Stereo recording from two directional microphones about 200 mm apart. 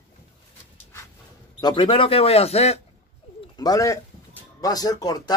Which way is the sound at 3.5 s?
20° left (ahead or behind).